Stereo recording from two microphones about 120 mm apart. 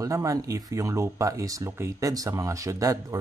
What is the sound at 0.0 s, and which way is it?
Speech, 30° right (ahead or behind).